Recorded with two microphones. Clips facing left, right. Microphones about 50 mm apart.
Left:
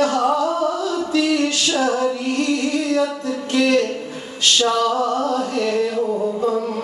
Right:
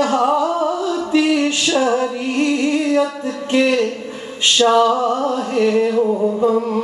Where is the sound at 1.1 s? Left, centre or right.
Right.